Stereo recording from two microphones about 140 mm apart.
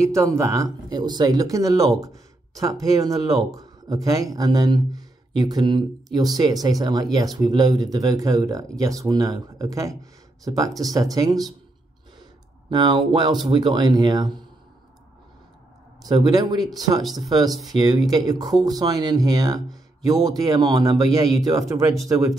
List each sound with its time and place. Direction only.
0.1 s speech: 20° right (ahead or behind)
12.6 s speech: 35° right (ahead or behind)
16.0 s speech: 30° right (ahead or behind)
17.0 s speech: centre (ahead or behind)
17.6 s speech: 30° right (ahead or behind)